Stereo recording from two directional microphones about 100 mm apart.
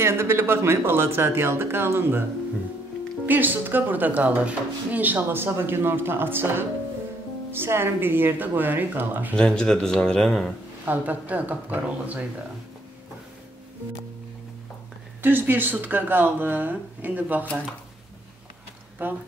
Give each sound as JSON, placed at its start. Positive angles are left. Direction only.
{"t": 0.0, "sound": "speech", "side_deg": -25}
{"t": 3.3, "sound": "speech", "side_deg": -20}
{"t": 9.3, "sound": "a man's voice", "side_deg": 10}
{"t": 10.9, "sound": "speech", "side_deg": -15}
{"t": 15.2, "sound": "speech", "side_deg": -20}
{"t": 19.0, "sound": "speech", "side_deg": -20}